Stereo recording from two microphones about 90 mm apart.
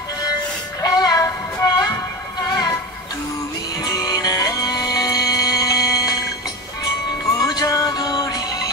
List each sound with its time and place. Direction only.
0.7 s music: 45° left (ahead or behind)
3.8 s music: 45° left (ahead or behind)
7.3 s music: 40° left (ahead or behind)